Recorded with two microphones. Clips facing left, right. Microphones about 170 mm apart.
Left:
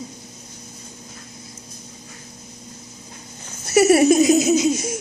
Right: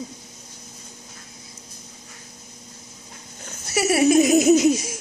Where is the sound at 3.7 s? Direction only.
45° left (ahead or behind).